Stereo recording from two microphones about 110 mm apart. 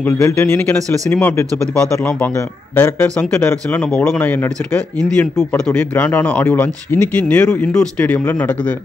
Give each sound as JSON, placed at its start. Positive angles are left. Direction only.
{"t": 0.0, "sound": "speech", "side_deg": 15}